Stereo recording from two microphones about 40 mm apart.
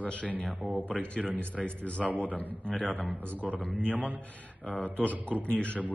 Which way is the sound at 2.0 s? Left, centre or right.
Right.